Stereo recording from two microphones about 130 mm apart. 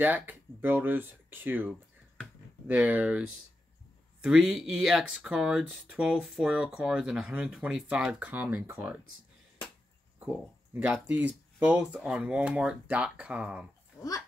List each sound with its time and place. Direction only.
0.0 s speech: 15° right (ahead or behind)
2.1 s a sound: 5° right (ahead or behind)
4.2 s speech: 5° right (ahead or behind)
10.1 s a sound: 5° right (ahead or behind)
10.7 s speech: 15° right (ahead or behind)
13.9 s dog: 25° left (ahead or behind)